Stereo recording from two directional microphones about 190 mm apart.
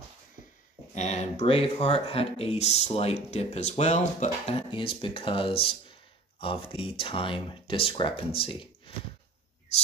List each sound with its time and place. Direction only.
0.9 s speech: 35° left (ahead or behind)